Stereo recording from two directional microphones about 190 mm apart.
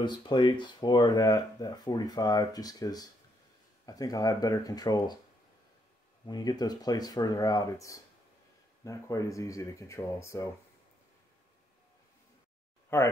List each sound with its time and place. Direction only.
0.0 s speech: 25° left (ahead or behind)
6.2 s speech: 20° left (ahead or behind)
12.9 s speech: 10° left (ahead or behind)